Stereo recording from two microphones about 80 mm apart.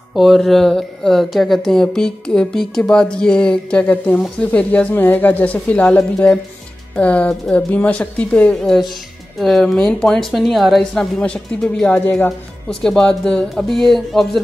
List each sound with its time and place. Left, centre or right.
0.1 s speech: centre
11.8 s speech: centre
12.3 s speech: centre